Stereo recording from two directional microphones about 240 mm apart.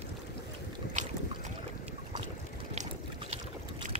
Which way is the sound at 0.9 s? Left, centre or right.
Right.